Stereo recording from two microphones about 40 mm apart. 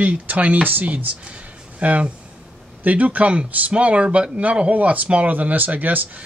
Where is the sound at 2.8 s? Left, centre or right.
Right.